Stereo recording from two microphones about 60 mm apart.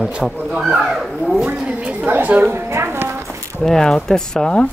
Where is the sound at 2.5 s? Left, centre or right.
Right.